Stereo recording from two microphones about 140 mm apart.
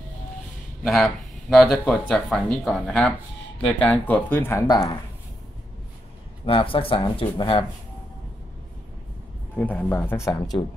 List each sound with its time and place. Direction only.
0.8 s speech: centre (ahead or behind); by 4.8 s 25° left (ahead or behind)
6.4 s speech: 40° left (ahead or behind)
9.6 s speech: 10° left (ahead or behind)